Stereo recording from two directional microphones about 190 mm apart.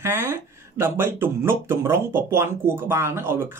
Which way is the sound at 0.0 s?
15° right (ahead or behind).